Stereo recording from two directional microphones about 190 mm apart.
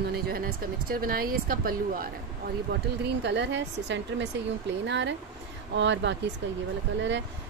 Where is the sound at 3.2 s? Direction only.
65° right (ahead or behind).